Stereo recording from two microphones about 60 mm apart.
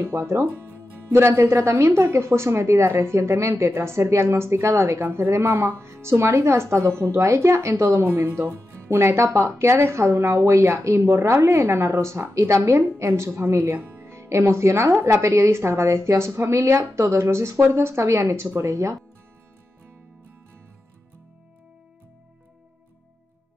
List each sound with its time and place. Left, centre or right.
0.3 s speech: right
13.7 s speech: right